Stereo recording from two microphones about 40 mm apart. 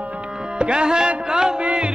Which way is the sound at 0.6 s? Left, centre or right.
Right.